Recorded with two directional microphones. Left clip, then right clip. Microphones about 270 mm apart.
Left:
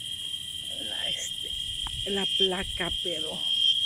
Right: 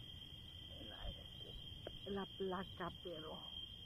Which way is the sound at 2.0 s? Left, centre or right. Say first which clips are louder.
Left 19 dB; left.